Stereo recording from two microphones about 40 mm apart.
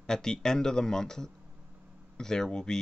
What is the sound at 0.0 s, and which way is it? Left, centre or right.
Speech, centre.